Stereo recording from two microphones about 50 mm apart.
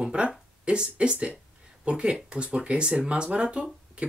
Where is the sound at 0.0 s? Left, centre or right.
Centre.